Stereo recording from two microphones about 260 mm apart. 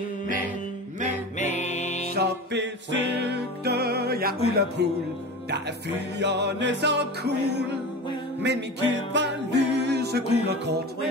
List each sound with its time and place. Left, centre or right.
1.4 s music: left
2.1 s music: right
6.1 s music: right
8.4 s music: right